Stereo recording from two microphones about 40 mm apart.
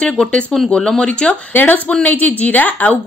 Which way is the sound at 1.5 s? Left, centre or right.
Left.